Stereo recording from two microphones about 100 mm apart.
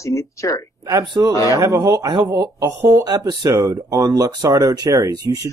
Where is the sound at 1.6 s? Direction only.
40° right (ahead or behind).